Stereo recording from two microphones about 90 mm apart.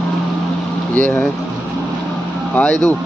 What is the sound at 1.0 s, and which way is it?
Speech, 15° left (ahead or behind).